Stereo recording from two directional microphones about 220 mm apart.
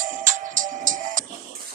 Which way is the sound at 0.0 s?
35° right (ahead or behind).